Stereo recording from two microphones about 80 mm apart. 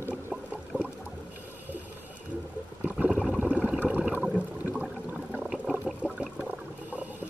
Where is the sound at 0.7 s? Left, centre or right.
Centre.